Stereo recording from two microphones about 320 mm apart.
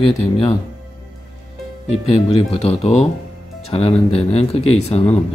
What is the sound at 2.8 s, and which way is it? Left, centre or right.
Speech, centre.